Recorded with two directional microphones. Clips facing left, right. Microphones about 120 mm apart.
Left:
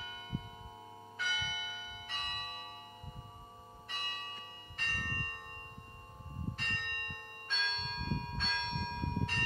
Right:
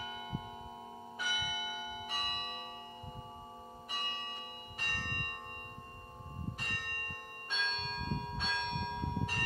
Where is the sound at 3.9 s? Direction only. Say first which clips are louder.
Right 2 dB; 15° right (ahead or behind).